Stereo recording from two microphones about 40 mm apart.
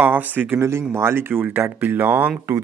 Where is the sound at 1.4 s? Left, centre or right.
Right.